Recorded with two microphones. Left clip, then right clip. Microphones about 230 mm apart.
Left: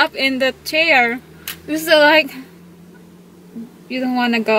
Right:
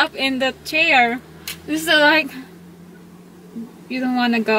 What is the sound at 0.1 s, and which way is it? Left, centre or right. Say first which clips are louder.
Speech: left 3 dB; right.